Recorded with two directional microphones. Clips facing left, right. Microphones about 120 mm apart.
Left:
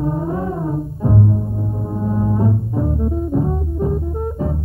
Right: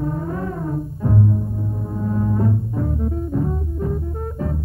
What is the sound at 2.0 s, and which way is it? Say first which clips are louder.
Brass instrument: left 2 dB; 20° left (ahead or behind).